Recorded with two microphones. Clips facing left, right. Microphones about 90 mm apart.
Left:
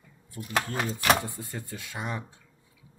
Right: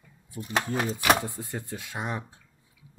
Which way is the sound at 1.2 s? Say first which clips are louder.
Right 3 dB; 20° right (ahead or behind).